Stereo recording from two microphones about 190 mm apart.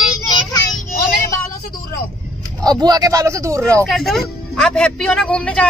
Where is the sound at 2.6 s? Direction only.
20° right (ahead or behind).